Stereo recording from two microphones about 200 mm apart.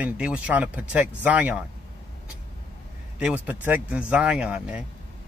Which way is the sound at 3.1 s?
5° right (ahead or behind).